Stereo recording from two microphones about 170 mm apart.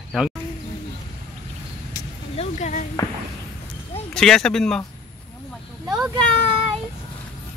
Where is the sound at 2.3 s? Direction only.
40° left (ahead or behind).